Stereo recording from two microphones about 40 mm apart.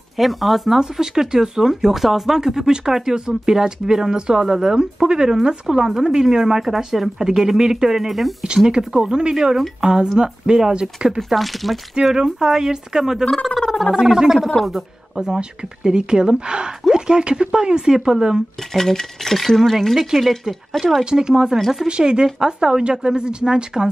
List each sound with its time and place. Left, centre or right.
0.2 s speech: centre
0.7 s speech: centre
8.6 s speech: centre
11.1 s speech: centre
11.9 s speech: centre
13.6 s gargling: centre
13.9 s speech: centre
18.7 s speech: centre
21.0 s speech: right
21.5 s speech: centre
21.8 s speech: right